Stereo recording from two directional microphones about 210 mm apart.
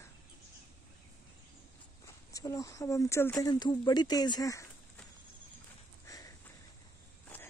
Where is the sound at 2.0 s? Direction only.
15° left (ahead or behind).